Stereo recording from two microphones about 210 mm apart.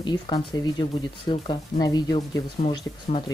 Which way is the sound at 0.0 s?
20° left (ahead or behind).